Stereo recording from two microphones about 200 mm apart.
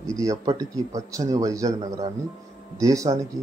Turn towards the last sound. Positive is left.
turn(degrees=-15)  # may be behind; listen again after turning